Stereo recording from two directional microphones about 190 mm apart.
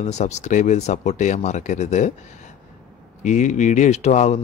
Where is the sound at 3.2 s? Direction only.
40° left (ahead or behind).